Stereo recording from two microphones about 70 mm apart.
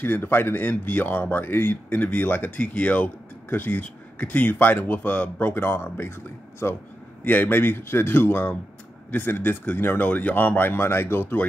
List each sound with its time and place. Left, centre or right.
0.0 s speech: left